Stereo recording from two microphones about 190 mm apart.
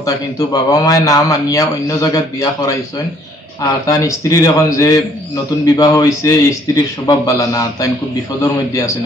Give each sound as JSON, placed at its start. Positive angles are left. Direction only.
{"t": 0.0, "sound": "a man's voice", "side_deg": 20}
{"t": 3.8, "sound": "a man's voice", "side_deg": 20}